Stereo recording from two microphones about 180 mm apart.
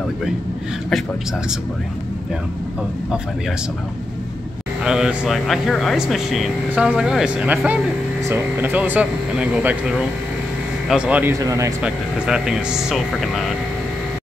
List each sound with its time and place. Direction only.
4.8 s speech: 5° right (ahead or behind)
11.8 s speech: 5° right (ahead or behind)